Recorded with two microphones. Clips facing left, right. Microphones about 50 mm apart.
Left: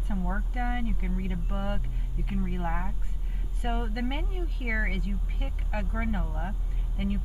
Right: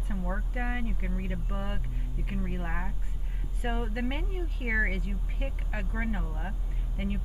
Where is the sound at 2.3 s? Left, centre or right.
Centre.